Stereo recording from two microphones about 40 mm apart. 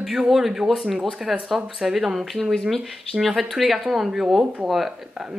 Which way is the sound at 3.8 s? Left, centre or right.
Centre.